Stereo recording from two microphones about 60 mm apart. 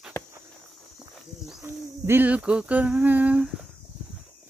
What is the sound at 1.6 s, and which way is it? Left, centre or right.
Speech, right.